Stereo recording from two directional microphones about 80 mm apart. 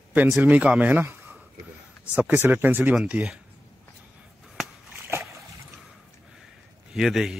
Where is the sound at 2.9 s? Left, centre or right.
Centre.